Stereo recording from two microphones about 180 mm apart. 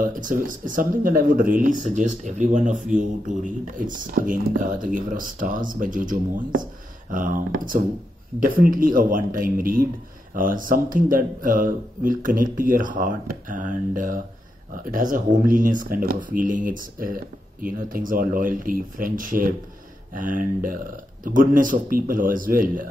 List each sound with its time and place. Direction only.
0.0 s speech: 45° right (ahead or behind)